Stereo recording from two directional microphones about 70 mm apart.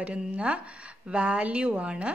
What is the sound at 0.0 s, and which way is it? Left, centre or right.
A woman's voice, centre.